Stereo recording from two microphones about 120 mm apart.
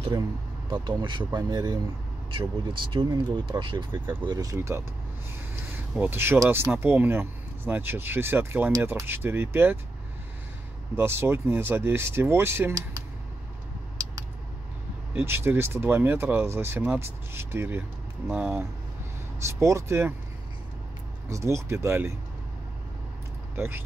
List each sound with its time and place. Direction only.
0.8 s speech: 40° right (ahead or behind)
2.8 s speech: 45° right (ahead or behind)
3.9 s speech: 20° right (ahead or behind)
4.3 s speech: 30° right (ahead or behind)
5.9 s speech: 20° right (ahead or behind)
11.0 s speech: 20° right (ahead or behind)
15.1 s speech: 20° right (ahead or behind)
21.3 s speech: 25° right (ahead or behind)
23.5 s speech: 20° right (ahead or behind)